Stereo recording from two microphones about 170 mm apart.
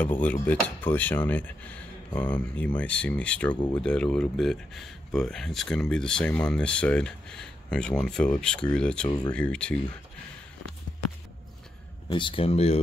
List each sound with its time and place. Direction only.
0.0 s speech: 10° left (ahead or behind)
12.1 s speech: 30° left (ahead or behind)